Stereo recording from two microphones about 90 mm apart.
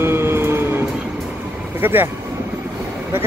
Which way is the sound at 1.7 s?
20° right (ahead or behind).